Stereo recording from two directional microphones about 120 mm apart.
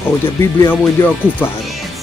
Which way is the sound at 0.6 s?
20° left (ahead or behind).